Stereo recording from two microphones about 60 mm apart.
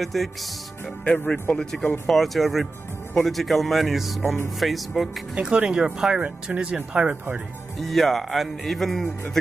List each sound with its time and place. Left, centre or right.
0.0 s speech: centre
1.0 s speech: left
2.0 s speech: centre
5.3 s speech: centre
7.8 s speech: centre